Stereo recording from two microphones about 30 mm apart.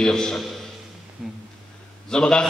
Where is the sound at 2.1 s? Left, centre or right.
Left.